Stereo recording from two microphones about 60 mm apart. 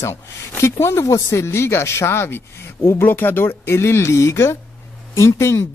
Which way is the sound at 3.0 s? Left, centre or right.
Left.